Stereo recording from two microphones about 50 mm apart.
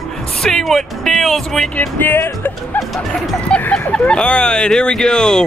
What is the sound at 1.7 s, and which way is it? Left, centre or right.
Music, left.